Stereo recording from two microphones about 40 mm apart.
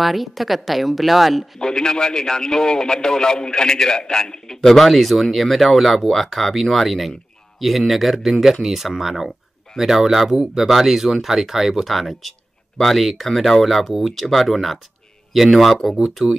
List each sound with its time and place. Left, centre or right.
0.0 s speech: centre
1.6 s speech: centre
4.6 s speech: centre
16.2 s speech: right